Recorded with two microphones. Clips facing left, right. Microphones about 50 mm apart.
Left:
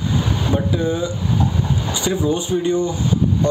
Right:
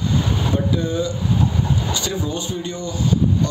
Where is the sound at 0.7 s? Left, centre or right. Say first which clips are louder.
Left 1 dB; centre.